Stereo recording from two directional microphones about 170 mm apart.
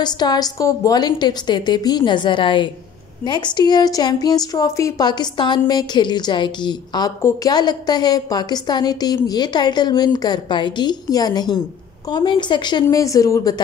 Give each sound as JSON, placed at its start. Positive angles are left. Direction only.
{"t": 0.0, "sound": "a woman's voice", "side_deg": 25}